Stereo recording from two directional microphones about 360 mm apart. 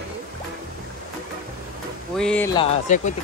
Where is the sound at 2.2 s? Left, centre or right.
Centre.